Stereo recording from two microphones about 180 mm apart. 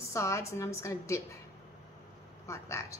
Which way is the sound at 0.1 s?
15° left (ahead or behind).